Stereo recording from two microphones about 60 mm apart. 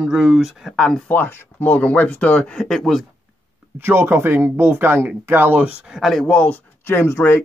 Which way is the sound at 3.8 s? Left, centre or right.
Right.